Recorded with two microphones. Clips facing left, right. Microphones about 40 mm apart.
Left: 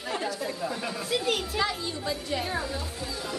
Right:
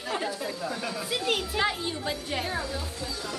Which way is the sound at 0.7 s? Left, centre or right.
Centre.